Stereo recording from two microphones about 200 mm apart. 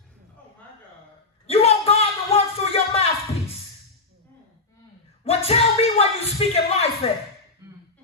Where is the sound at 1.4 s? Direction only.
30° left (ahead or behind).